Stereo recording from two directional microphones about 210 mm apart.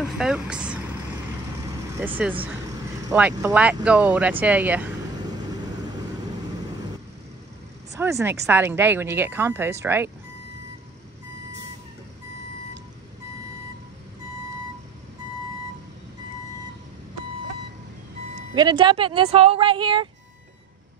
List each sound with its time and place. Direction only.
0.2 s vehicle: 5° right (ahead or behind)
2.0 s a woman's voice: 10° right (ahead or behind)
7.9 s a woman's voice: 15° right (ahead or behind)
18.5 s speech: 20° right (ahead or behind)